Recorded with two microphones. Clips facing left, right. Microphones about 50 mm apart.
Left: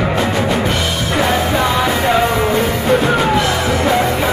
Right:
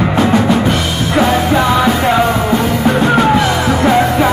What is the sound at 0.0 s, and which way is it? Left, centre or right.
Drum, centre.